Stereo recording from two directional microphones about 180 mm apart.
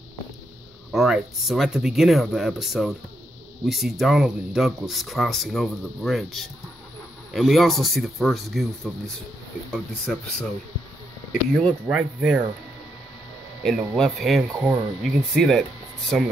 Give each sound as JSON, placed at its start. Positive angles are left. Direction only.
{"t": 0.9, "sound": "speech", "side_deg": 0}
{"t": 11.9, "sound": "speech", "side_deg": -5}
{"t": 13.6, "sound": "speech", "side_deg": 0}